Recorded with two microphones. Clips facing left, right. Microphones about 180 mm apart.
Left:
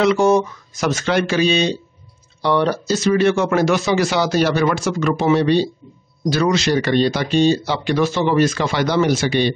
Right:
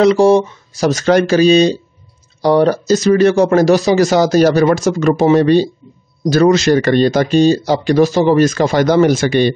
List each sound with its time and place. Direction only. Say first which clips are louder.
0.0 s speech: right 5 dB; 35° right (ahead or behind); by 9.5 s 50° right (ahead or behind)